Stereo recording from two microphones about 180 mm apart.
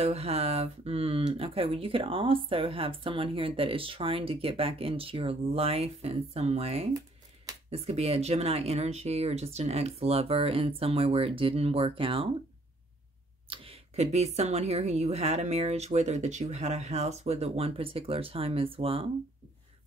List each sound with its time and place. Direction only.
0.0 s speech: 35° right (ahead or behind)
13.5 s speech: 35° right (ahead or behind)